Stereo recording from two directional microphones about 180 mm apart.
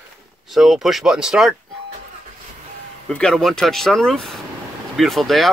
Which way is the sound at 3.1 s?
5° left (ahead or behind).